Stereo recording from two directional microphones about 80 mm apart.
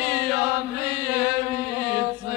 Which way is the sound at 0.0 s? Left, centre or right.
Centre.